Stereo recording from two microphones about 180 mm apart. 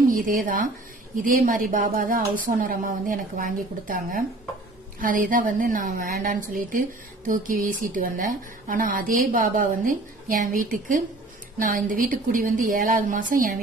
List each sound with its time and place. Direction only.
0.1 s a woman's voice: 50° right (ahead or behind)